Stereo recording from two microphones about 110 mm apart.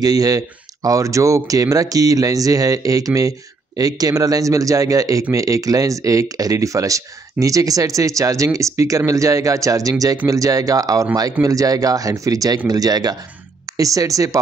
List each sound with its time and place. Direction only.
0.0 s speech: 35° right (ahead or behind)